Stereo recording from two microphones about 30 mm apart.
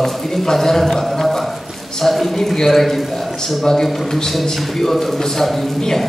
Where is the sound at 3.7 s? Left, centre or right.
Left.